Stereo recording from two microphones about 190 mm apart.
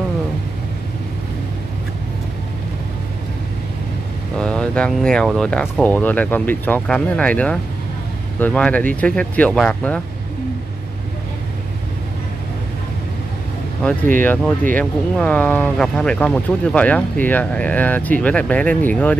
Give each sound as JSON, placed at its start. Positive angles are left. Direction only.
{"t": 4.4, "sound": "speech", "side_deg": 5}
{"t": 14.1, "sound": "speech", "side_deg": 10}